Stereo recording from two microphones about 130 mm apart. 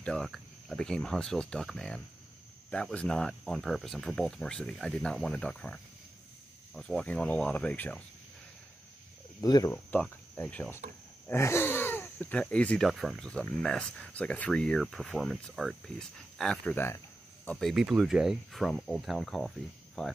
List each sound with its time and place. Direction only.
0.0 s speech: 5° left (ahead or behind)
9.4 s speech: 30° left (ahead or behind)
9.8 s cricket: 10° left (ahead or behind)
11.2 s speech: 20° left (ahead or behind); by 16.7 s 5° left (ahead or behind)
16.7 s speech: 20° left (ahead or behind)
17.5 s speech: centre (ahead or behind)